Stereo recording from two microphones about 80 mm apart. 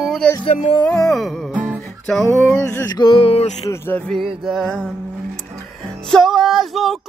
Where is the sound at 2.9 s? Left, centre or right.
Left.